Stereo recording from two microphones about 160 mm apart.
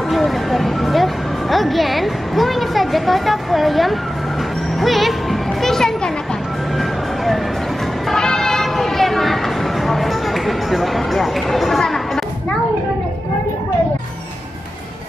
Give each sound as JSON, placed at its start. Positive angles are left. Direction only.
{"t": 0.1, "sound": "speech", "side_deg": 0}
{"t": 4.7, "sound": "music", "side_deg": 0}
{"t": 8.1, "sound": "a sound", "side_deg": 5}